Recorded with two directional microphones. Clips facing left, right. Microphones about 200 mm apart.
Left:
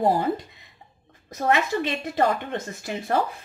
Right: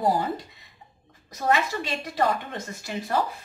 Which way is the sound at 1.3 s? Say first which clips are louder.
Left 2 dB; 55° left (ahead or behind).